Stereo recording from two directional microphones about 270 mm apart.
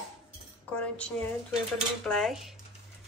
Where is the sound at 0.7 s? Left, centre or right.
Centre.